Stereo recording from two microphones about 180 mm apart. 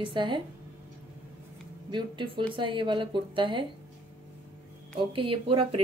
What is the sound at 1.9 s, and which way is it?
A woman's voice, 25° right (ahead or behind).